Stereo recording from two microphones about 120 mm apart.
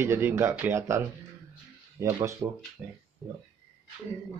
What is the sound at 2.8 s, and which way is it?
Speech, 10° right (ahead or behind).